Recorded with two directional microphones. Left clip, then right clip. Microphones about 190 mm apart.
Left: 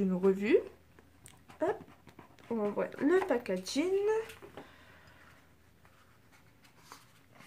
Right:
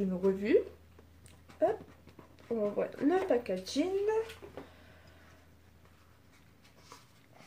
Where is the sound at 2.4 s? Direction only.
40° left (ahead or behind).